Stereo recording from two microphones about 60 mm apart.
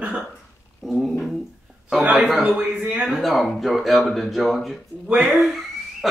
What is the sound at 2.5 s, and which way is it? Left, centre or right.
Speech, right.